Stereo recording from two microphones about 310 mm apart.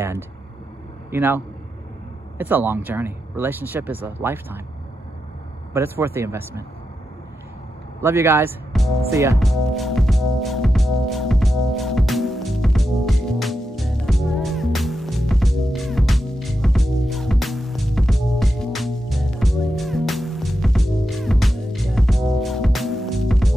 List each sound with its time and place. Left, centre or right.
1.1 s speech: centre
5.7 s speech: centre
8.0 s music: centre